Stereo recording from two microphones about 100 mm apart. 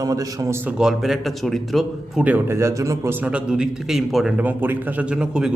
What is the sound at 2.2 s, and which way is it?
Speech, 15° right (ahead or behind).